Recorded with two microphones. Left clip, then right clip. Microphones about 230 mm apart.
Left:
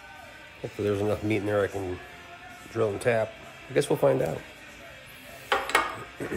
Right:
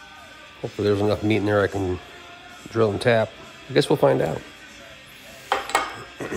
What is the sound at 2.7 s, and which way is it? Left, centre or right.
Speech, right.